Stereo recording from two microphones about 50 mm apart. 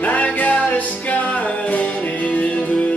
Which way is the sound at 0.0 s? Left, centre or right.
Left.